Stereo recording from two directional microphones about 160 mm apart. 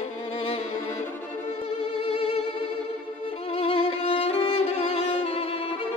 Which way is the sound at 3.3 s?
35° left (ahead or behind).